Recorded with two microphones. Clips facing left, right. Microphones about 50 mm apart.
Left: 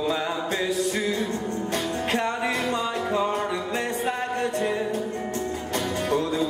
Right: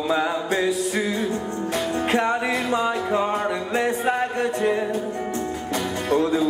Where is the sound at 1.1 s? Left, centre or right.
Right.